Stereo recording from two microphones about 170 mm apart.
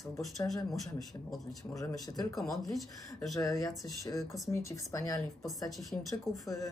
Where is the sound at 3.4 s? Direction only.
20° left (ahead or behind).